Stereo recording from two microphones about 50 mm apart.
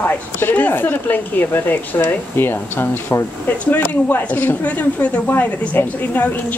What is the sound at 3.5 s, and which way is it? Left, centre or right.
A woman's voice, left.